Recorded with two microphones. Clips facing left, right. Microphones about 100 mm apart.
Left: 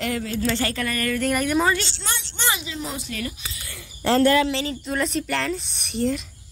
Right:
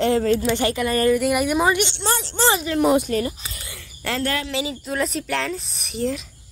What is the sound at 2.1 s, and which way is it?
Speech, 40° right (ahead or behind).